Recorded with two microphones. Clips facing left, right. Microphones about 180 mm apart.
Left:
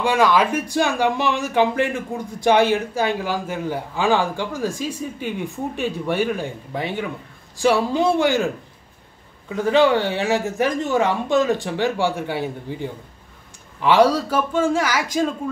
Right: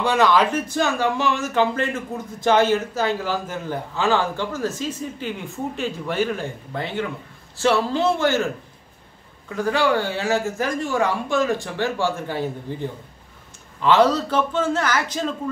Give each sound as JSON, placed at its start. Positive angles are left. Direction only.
{"t": 0.0, "sound": "speech", "side_deg": 10}
{"t": 9.5, "sound": "speech", "side_deg": 20}